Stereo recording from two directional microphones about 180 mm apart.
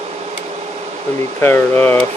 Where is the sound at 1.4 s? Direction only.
10° left (ahead or behind).